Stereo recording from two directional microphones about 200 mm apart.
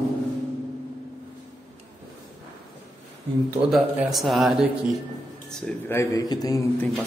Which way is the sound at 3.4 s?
5° right (ahead or behind).